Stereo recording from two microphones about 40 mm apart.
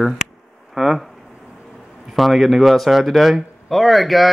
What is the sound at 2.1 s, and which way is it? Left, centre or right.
Speech, centre.